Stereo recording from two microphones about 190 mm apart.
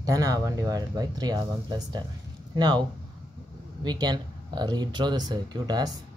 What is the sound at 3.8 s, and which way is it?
Speech, 20° right (ahead or behind).